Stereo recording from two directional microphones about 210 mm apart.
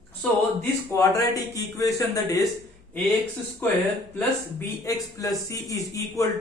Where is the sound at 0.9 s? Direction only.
15° left (ahead or behind).